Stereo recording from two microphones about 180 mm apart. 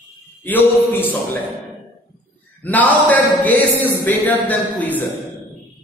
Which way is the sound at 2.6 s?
10° left (ahead or behind).